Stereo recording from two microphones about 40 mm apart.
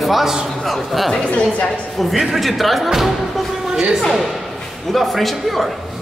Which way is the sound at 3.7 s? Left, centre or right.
Centre.